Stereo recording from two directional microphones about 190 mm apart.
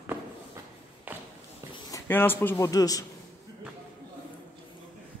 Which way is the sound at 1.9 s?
15° left (ahead or behind).